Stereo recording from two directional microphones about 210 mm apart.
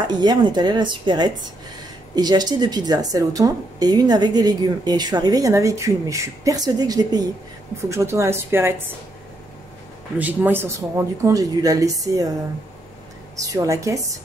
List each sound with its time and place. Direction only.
0.2 s a woman's voice: 20° right (ahead or behind)
10.1 s speech: 10° right (ahead or behind)
13.4 s speech: 15° right (ahead or behind)